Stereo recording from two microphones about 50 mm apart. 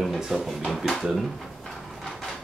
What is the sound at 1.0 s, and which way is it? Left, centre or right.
Drawer open or close, centre.